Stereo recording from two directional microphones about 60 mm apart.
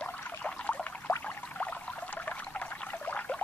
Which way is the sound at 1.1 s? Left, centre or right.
Left.